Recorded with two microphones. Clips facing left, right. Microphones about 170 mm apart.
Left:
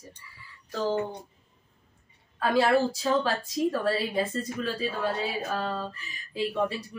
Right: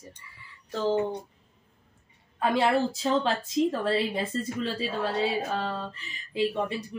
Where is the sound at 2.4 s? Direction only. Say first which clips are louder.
Left 1 dB; 20° right (ahead or behind).